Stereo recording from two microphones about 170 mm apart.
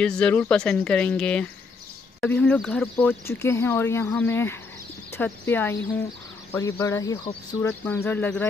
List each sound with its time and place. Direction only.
0.0 s speech: 5° left (ahead or behind)